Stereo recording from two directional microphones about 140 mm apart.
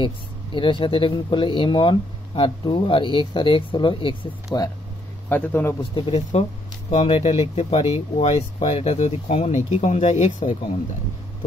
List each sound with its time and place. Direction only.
0.0 s speech: 35° left (ahead or behind)
4.5 s a man's voice: 25° left (ahead or behind)
5.9 s speech: 45° left (ahead or behind); by 10.5 s 60° left (ahead or behind)